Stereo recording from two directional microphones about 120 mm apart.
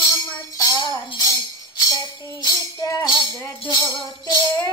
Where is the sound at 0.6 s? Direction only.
40° left (ahead or behind).